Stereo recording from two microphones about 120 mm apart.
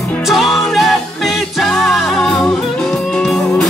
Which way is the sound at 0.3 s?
Centre (ahead or behind).